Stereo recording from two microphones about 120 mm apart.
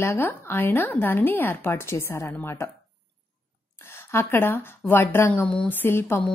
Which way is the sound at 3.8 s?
20° left (ahead or behind).